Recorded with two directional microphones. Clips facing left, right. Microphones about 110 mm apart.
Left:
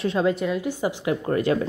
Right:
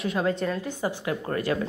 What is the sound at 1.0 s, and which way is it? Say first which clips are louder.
Speech: left 8 dB; 25° left (ahead or behind).